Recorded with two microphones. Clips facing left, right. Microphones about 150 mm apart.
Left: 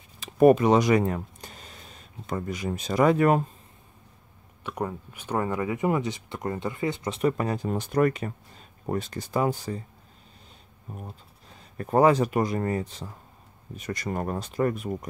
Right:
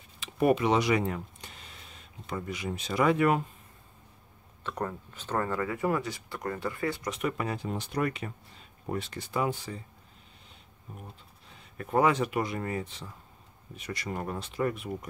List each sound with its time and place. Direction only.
0.2 s a sound: 45° left (ahead or behind)
2.2 s speech: 45° left (ahead or behind)
4.6 s speech: 10° left (ahead or behind); by 9.8 s 40° left (ahead or behind)
10.9 s speech: 40° left (ahead or behind)